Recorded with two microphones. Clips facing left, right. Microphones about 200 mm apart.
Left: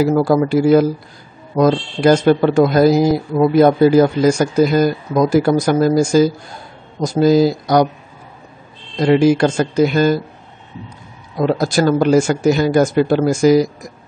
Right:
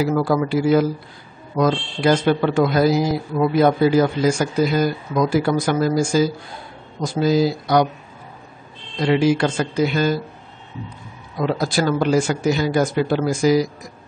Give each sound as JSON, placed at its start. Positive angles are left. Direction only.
{"t": 0.0, "sound": "speech", "side_deg": 45}
{"t": 8.9, "sound": "speech", "side_deg": 45}
{"t": 11.3, "sound": "speech", "side_deg": 45}